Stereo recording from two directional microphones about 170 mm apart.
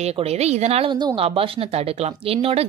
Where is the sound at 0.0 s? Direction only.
35° right (ahead or behind).